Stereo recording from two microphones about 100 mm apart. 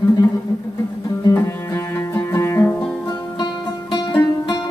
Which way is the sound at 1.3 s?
30° left (ahead or behind).